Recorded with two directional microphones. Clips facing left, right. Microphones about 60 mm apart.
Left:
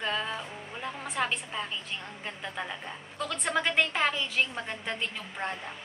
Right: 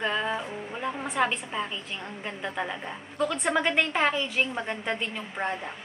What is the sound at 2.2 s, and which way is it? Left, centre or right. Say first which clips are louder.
A woman's voice: right 6 dB; centre.